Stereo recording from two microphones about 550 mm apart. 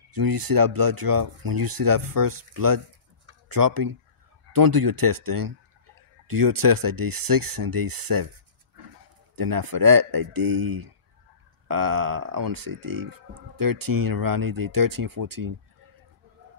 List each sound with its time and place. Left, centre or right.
0.1 s speech: right
9.3 s speech: right